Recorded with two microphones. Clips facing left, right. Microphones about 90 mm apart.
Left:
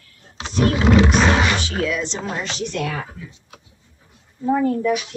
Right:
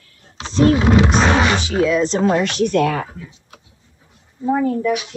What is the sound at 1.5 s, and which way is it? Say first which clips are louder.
Speech: right 6 dB; 20° right (ahead or behind).